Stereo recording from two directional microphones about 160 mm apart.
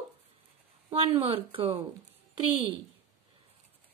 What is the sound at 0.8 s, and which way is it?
Speech, 35° right (ahead or behind).